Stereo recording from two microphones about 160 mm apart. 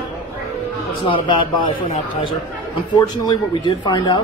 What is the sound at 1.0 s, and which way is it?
Speech, 30° left (ahead or behind).